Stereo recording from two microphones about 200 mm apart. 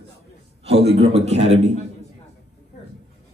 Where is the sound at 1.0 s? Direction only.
30° right (ahead or behind).